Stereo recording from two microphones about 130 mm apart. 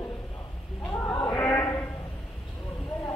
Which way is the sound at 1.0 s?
20° left (ahead or behind).